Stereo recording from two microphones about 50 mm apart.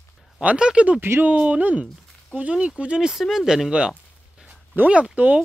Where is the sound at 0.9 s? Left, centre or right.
Right.